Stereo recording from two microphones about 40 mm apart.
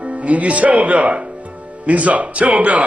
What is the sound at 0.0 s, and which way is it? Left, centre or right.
Speech, right.